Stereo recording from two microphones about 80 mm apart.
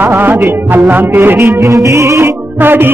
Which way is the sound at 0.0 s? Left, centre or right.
Right.